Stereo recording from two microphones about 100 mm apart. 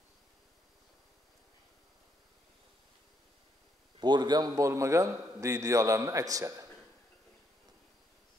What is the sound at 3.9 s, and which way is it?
A man's voice, 50° right (ahead or behind).